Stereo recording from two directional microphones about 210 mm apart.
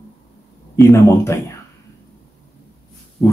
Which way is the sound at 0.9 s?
15° left (ahead or behind).